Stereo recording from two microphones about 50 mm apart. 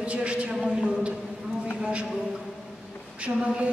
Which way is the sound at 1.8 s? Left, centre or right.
Right.